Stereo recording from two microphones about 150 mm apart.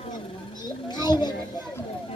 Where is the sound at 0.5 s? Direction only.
30° left (ahead or behind).